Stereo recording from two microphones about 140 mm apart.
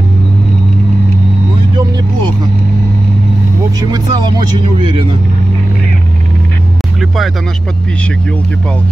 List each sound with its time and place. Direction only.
3.9 s speech: 30° right (ahead or behind)